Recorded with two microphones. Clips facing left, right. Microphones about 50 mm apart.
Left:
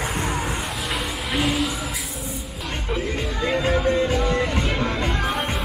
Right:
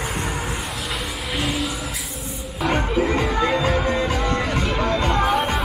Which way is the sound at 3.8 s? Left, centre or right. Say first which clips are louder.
Left 1 dB; right.